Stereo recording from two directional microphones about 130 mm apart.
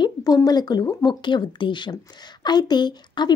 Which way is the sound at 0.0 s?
30° left (ahead or behind).